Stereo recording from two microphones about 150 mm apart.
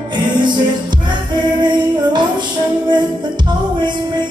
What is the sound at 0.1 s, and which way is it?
Music, 30° right (ahead or behind).